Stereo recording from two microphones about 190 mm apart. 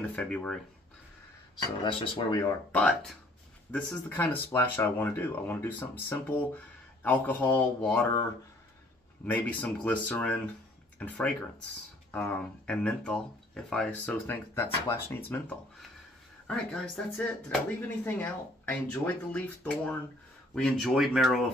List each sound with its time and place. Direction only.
0.1 s speech: 5° left (ahead or behind)
1.9 s speech: 25° left (ahead or behind)
2.7 s speech: 5° left (ahead or behind)
9.2 s speech: 10° left (ahead or behind)
16.4 s speech: 5° left (ahead or behind)